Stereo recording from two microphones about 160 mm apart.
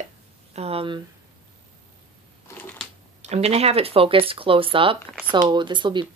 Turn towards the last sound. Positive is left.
turn(degrees=-30)  # may be behind; listen again after turning